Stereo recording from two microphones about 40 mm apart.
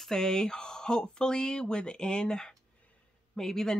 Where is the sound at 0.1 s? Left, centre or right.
Centre.